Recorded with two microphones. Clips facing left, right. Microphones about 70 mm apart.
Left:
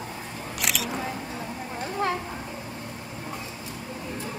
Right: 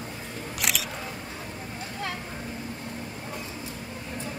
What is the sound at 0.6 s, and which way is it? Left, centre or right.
Single-lens reflex camera, centre.